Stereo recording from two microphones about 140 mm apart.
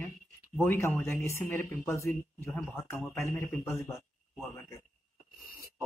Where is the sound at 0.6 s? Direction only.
15° left (ahead or behind).